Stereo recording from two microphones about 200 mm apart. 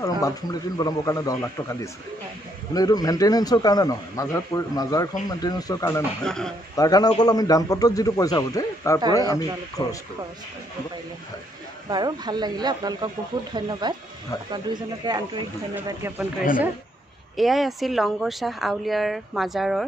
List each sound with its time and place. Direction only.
0.0 s a man's voice: 15° left (ahead or behind)
6.2 s speech: 5° left (ahead or behind)
6.8 s a man's voice: 20° left (ahead or behind)
11.9 s speech: 20° right (ahead or behind)
15.7 s speech: 10° right (ahead or behind)
17.4 s speech: centre (ahead or behind)